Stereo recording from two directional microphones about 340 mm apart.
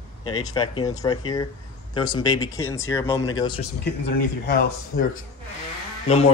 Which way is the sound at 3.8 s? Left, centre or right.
Left.